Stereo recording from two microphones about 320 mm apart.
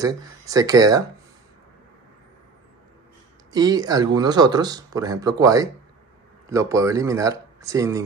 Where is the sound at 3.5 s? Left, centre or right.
Centre.